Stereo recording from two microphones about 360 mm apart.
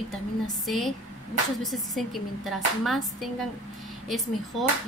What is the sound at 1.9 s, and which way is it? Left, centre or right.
Speech, centre.